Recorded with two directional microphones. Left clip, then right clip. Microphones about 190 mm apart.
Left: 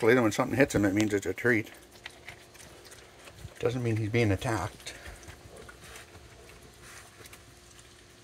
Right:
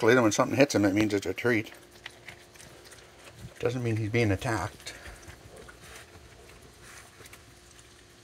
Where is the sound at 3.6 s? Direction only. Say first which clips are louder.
Even; 10° left (ahead or behind).